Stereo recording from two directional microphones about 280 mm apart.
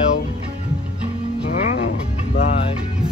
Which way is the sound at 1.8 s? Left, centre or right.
Left.